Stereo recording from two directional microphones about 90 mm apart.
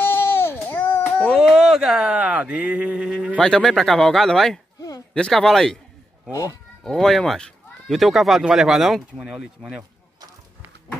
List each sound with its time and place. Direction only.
0.0 s a sound: 25° left (ahead or behind)
1.3 s speech: 5° right (ahead or behind)
3.3 s speech: 10° left (ahead or behind)
6.3 s speech: 35° left (ahead or behind)
6.8 s speech: 5° left (ahead or behind)